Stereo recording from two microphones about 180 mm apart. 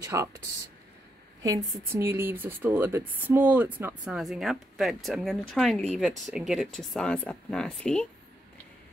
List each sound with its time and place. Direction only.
0.0 s speech: 20° right (ahead or behind)
1.4 s speech: 15° right (ahead or behind); by 8.1 s 5° left (ahead or behind)